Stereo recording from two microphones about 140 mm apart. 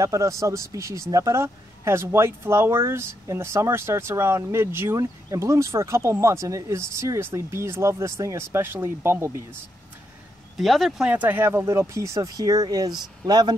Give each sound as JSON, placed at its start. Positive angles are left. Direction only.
{"t": 0.0, "sound": "speech", "side_deg": -20}
{"t": 10.6, "sound": "speech", "side_deg": 0}
{"t": 11.1, "sound": "speech", "side_deg": -10}